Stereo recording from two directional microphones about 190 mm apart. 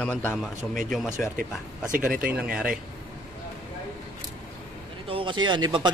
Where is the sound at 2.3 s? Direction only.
5° right (ahead or behind).